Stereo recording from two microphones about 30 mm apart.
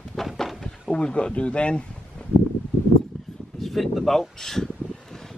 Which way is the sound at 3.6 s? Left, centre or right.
Centre.